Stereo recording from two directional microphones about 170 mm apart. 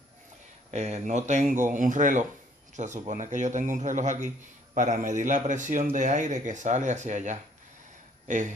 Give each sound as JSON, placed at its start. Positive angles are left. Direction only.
{"t": 0.7, "sound": "a man's voice", "side_deg": -40}